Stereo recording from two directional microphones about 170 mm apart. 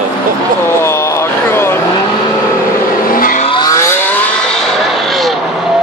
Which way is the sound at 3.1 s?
55° left (ahead or behind).